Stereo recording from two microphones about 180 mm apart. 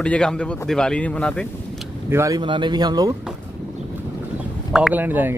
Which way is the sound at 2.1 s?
15° right (ahead or behind).